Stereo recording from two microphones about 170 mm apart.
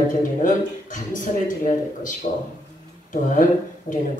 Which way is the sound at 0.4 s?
50° left (ahead or behind).